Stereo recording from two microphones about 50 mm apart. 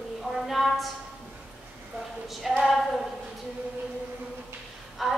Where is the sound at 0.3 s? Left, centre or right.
Centre.